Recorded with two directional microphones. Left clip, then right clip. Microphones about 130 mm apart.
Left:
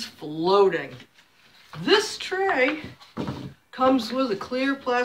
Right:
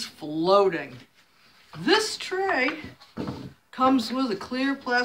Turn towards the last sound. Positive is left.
turn(degrees=-50)  # may be behind; listen again after turning